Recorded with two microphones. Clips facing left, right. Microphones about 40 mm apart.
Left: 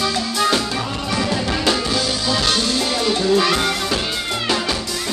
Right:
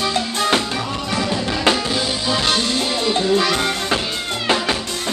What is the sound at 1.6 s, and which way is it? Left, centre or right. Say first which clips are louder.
Music: right 3 dB; right.